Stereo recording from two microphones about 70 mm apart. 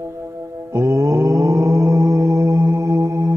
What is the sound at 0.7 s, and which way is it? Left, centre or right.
Mantra, right.